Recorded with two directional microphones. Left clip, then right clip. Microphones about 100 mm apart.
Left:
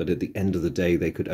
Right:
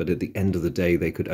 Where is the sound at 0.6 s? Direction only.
30° right (ahead or behind).